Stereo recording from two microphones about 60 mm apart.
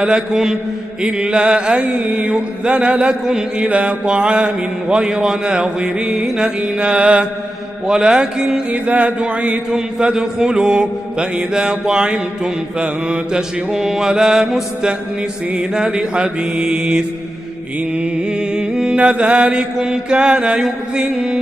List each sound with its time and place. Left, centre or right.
0.0 s a man's voice: centre
6.8 s mantra: centre
7.8 s a man's voice: centre
8.8 s a man's voice: right
15.5 s a man's voice: centre
18.5 s a man's voice: centre